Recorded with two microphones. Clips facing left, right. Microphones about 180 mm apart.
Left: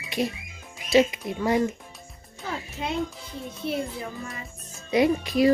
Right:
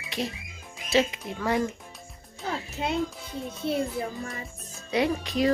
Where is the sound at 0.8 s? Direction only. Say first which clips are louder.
Left 4 dB; 15° left (ahead or behind).